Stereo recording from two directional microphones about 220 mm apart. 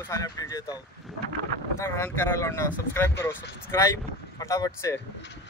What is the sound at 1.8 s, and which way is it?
Speech, 10° left (ahead or behind).